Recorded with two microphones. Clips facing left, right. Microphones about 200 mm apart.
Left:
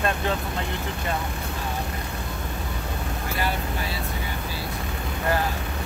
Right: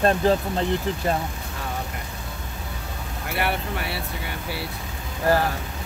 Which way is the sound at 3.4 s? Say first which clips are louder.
Right 3 dB; 65° right (ahead or behind).